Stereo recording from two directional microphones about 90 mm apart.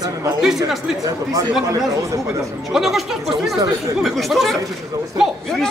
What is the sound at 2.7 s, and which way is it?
Speech, 5° right (ahead or behind).